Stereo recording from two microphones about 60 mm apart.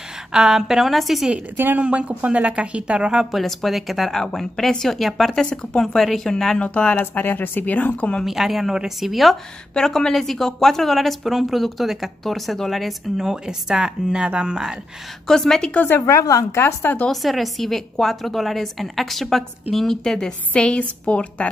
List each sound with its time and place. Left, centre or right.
0.3 s a woman's voice: centre
1.6 s speech: right
1.9 s speech: right
3.3 s a woman's voice: centre
6.6 s speech: left
7.0 s speech: left
8.3 s a woman's voice: centre
13.2 s speech: centre
15.2 s speech: centre
15.7 s speech: left
16.1 s a woman's voice: left
16.5 s speech: left
17.1 s a woman's voice: centre; by 21.5 s left